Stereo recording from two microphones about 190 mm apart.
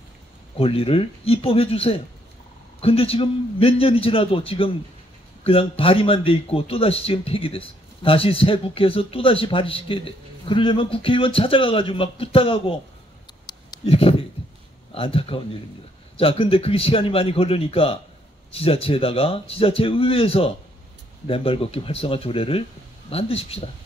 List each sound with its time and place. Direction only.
0.6 s a man's voice: 30° left (ahead or behind)
13.5 s a sound: 25° left (ahead or behind)
15.0 s a man's voice: 30° left (ahead or behind)